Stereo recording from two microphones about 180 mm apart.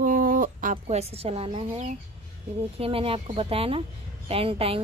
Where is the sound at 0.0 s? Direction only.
50° right (ahead or behind).